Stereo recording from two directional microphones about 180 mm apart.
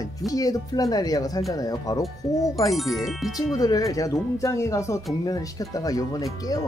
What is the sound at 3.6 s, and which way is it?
Speech, 20° left (ahead or behind).